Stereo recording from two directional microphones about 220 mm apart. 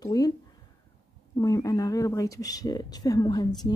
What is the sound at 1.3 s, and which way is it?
Speech, 15° left (ahead or behind).